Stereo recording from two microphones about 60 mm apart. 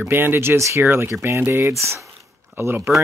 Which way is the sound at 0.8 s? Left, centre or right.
Right.